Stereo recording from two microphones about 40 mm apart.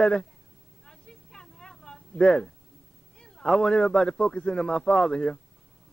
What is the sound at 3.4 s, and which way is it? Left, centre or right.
Speech, centre.